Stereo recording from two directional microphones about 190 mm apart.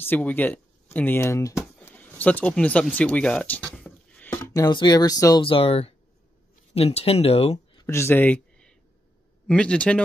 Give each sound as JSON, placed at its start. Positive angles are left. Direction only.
{"t": 0.0, "sound": "speech", "side_deg": 10}
{"t": 7.8, "sound": "a sound", "side_deg": 15}
{"t": 9.5, "sound": "a man's voice", "side_deg": 5}